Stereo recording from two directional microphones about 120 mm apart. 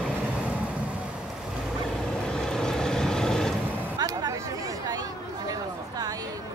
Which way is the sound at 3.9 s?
30° right (ahead or behind).